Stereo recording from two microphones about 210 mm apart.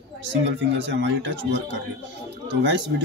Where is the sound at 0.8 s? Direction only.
60° right (ahead or behind).